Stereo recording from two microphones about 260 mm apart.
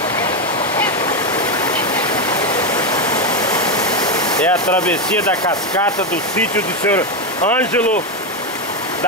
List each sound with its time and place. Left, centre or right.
2.9 s waterfall: centre
6.3 s speech: centre